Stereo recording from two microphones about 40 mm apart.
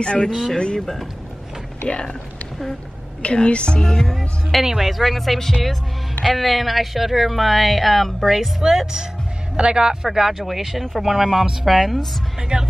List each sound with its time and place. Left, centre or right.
0.0 s a woman's voice: left
0.3 s a woman's voice: centre
0.6 s a woman's voice: left
1.9 s a woman's voice: left
3.2 s a woman's voice: left
3.8 s music: centre
4.6 s a woman's voice: centre
8.6 s speech: centre
10.0 s a woman's voice: centre
12.4 s speech: centre